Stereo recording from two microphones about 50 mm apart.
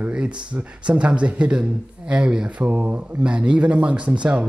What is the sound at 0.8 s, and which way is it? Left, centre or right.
Speech, right.